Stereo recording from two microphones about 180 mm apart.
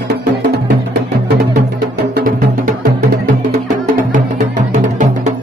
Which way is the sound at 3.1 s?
50° right (ahead or behind).